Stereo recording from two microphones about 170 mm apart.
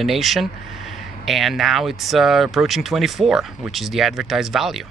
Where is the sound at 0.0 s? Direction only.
Centre (ahead or behind).